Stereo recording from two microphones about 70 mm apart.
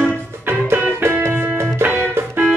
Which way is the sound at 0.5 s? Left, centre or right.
Right.